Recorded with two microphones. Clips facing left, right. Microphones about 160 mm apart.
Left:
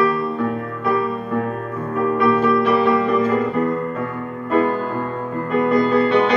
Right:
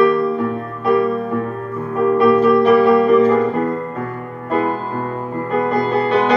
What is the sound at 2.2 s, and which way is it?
Music, 35° right (ahead or behind).